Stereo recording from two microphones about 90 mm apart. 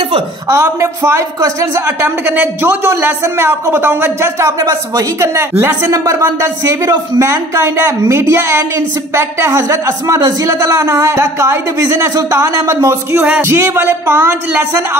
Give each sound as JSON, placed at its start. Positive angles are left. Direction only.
{"t": 0.5, "sound": "speech", "side_deg": -30}
{"t": 5.5, "sound": "music", "side_deg": -25}
{"t": 5.9, "sound": "speech", "side_deg": -35}
{"t": 13.4, "sound": "music", "side_deg": -30}